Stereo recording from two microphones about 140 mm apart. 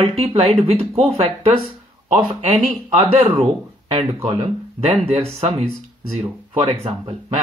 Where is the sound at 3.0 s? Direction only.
40° right (ahead or behind).